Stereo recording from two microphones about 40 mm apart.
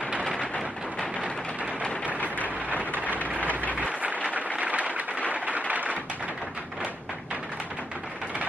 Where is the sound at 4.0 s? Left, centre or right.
Right.